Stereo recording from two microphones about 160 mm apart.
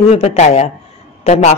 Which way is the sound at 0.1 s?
40° left (ahead or behind).